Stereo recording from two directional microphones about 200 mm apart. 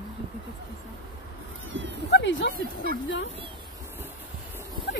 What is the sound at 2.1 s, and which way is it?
Speech, 60° left (ahead or behind).